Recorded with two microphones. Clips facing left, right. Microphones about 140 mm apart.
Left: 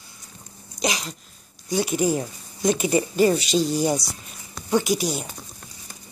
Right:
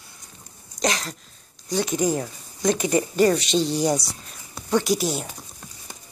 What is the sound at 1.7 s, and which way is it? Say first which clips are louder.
Speech: left 1 dB; 10° left (ahead or behind).